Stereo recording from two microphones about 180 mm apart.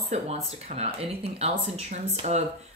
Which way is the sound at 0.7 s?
35° right (ahead or behind).